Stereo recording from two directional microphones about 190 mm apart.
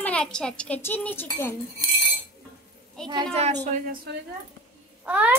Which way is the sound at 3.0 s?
25° right (ahead or behind).